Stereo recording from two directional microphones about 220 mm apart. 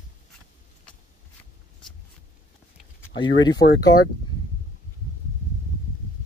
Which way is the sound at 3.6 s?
40° left (ahead or behind).